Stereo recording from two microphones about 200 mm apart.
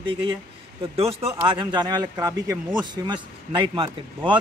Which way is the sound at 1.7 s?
20° right (ahead or behind).